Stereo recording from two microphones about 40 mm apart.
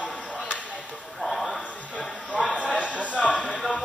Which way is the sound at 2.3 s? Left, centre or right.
Left.